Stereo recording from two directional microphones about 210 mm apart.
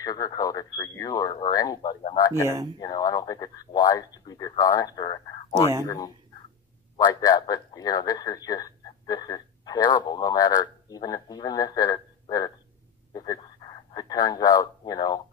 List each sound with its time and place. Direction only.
0.0 s speech: 15° left (ahead or behind)
2.4 s speech: 15° right (ahead or behind)
2.8 s speech: 20° left (ahead or behind)
7.2 s speech: 20° left (ahead or behind)